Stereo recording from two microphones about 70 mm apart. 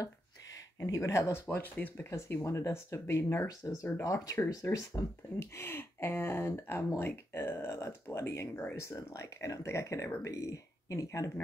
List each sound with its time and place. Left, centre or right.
0.7 s speech: left
1.5 s speech: left
2.0 s speech: left
3.4 s speech: left
5.6 s speech: left